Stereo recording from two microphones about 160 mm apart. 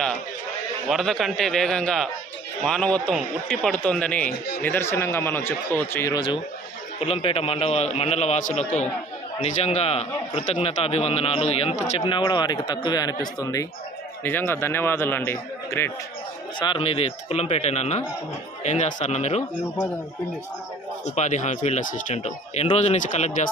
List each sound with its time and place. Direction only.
0.8 s a man's voice: centre (ahead or behind)
6.1 s a man's voice: 30° left (ahead or behind)
12.1 s speech: 30° left (ahead or behind)
16.5 s a man's voice: 30° left (ahead or behind)
21.0 s speech: 45° left (ahead or behind)